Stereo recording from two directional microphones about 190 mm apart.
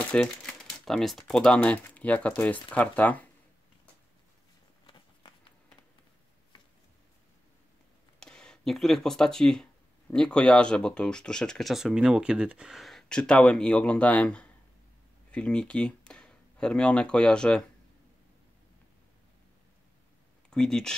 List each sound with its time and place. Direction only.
0.1 s speech: 5° left (ahead or behind)
4.8 s walk: 25° left (ahead or behind)
8.2 s speech: 5° left (ahead or behind)
20.4 s speech: 5° left (ahead or behind)